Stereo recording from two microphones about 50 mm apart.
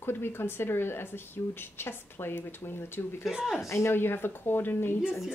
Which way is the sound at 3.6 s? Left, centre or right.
Left.